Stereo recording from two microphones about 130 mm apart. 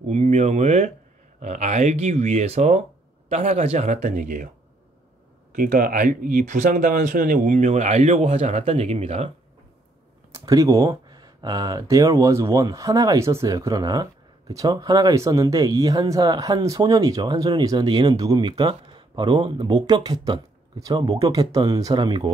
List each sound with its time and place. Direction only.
0.0 s speech: 60° right (ahead or behind); by 4.5 s 80° right
5.5 s speech: 90° right; by 9.3 s 55° right (ahead or behind)
10.3 s speech: 25° right (ahead or behind)